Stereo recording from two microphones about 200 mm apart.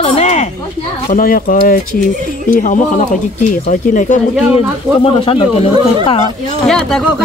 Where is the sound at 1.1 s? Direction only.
45° left (ahead or behind).